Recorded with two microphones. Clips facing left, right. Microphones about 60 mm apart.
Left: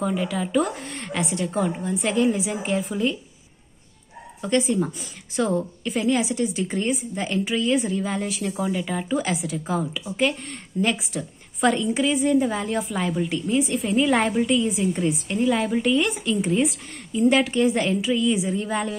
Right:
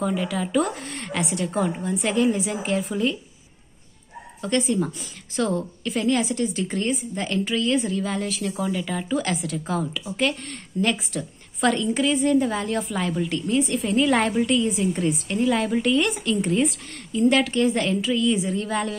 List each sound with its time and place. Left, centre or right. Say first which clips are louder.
0.0 s a woman's voice: even; centre
4.4 s a woman's voice: left 1 dB; centre
17.1 s a woman's voice: even; centre